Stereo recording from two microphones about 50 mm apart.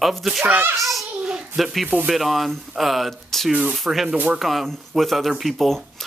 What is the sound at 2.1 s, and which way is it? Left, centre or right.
Speech, centre.